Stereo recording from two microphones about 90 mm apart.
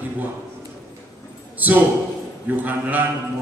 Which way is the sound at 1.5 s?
20° right (ahead or behind).